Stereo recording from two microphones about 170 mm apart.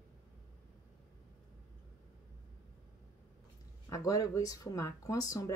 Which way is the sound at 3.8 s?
20° left (ahead or behind).